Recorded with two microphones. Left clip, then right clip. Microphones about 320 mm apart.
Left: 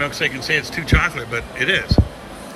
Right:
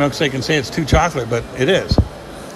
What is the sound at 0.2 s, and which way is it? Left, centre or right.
A man's voice, centre.